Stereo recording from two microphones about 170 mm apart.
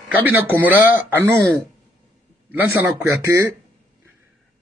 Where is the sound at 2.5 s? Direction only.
10° right (ahead or behind).